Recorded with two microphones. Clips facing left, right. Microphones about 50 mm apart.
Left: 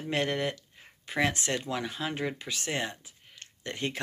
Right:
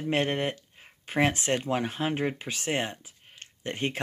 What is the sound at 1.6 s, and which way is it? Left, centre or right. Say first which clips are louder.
Speech: right 4 dB; right.